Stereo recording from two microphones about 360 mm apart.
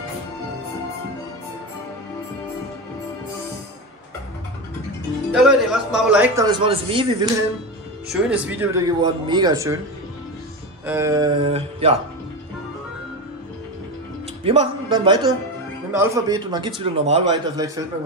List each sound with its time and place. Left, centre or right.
5.3 s a man's voice: centre
8.1 s speech: centre
10.9 s speech: centre
14.4 s speech: centre